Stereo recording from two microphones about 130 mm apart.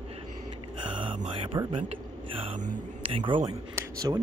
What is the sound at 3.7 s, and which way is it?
Speech, 25° right (ahead or behind).